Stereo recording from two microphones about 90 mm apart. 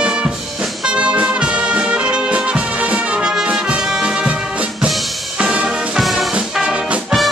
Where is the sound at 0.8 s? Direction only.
10° right (ahead or behind).